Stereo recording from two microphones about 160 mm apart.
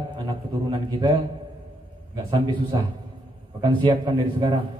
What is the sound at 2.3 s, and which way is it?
A man's voice, 25° right (ahead or behind).